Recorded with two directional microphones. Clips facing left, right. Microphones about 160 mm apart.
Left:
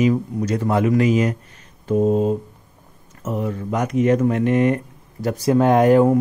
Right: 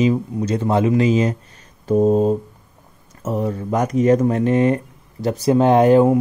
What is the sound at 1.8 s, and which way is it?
Speech, 40° right (ahead or behind).